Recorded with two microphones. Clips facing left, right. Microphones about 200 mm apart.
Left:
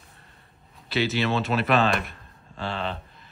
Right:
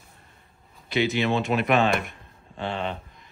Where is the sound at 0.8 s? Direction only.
15° right (ahead or behind).